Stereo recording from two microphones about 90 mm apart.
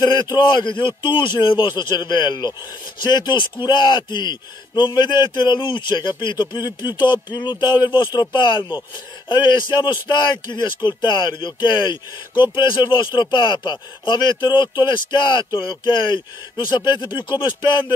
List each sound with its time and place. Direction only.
0.0 s a man's voice: 55° left (ahead or behind)